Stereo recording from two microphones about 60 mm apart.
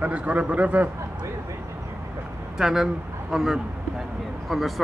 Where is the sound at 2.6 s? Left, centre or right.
Centre.